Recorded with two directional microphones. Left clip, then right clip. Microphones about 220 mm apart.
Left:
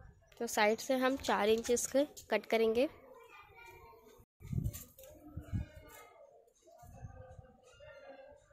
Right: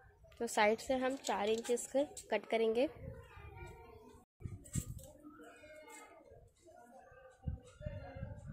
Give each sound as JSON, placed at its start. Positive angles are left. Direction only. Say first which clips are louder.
{"t": 0.4, "sound": "a woman's voice", "louder": "left 1 dB", "side_deg": 5}